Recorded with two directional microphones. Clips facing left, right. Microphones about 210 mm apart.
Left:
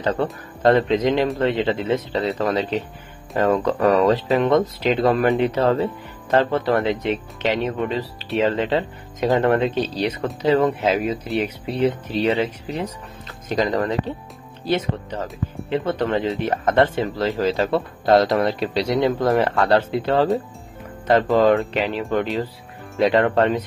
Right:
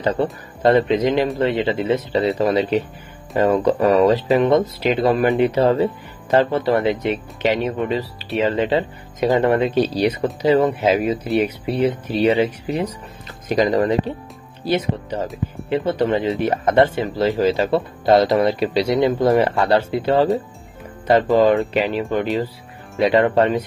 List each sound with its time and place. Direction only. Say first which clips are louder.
0.6 s speech: right 1 dB; centre (ahead or behind)
15.2 s speech: right 3 dB; centre (ahead or behind)
16.0 s speech: right 3 dB; 10° right (ahead or behind)